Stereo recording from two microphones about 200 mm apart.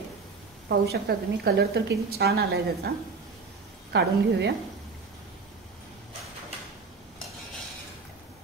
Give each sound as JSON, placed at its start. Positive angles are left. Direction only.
{"t": 0.7, "sound": "a woman's voice", "side_deg": -55}
{"t": 3.9, "sound": "a woman's voice", "side_deg": -55}